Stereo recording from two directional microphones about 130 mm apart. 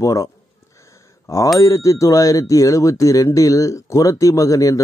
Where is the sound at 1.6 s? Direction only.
25° left (ahead or behind).